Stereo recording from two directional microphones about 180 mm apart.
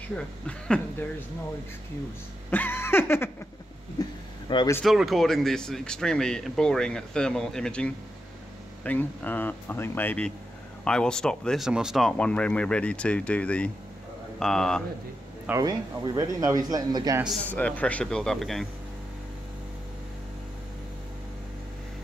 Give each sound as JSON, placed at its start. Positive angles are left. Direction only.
{"t": 0.1, "sound": "speech", "side_deg": 5}
{"t": 2.5, "sound": "speech", "side_deg": 10}
{"t": 4.0, "sound": "vehicle", "side_deg": 25}
{"t": 4.8, "sound": "speech", "side_deg": 0}
{"t": 15.4, "sound": "speech", "side_deg": -20}
{"t": 17.5, "sound": "speech", "side_deg": 10}